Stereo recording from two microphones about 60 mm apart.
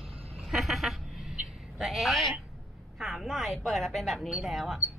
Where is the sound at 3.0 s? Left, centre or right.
Centre.